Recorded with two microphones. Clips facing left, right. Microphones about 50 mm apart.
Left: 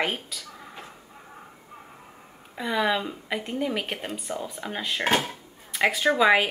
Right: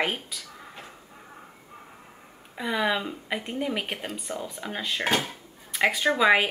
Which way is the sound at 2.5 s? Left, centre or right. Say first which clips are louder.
Left 1 dB; centre.